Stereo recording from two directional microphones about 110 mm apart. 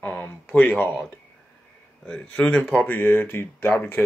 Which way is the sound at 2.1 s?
10° left (ahead or behind).